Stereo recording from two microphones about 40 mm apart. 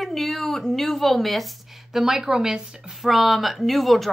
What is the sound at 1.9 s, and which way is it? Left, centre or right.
Speech, centre.